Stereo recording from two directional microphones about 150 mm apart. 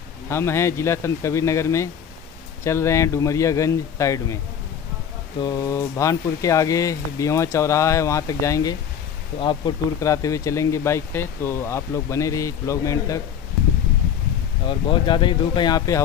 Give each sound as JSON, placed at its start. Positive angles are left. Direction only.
{"t": 0.3, "sound": "speech", "side_deg": 15}
{"t": 5.4, "sound": "speech", "side_deg": 25}
{"t": 9.4, "sound": "speech", "side_deg": 35}
{"t": 9.9, "sound": "speech", "side_deg": 20}
{"t": 14.7, "sound": "speech", "side_deg": 30}